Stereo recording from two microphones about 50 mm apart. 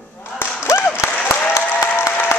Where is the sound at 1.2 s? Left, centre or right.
Left.